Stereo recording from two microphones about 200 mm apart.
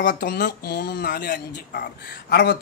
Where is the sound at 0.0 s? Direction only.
55° left (ahead or behind).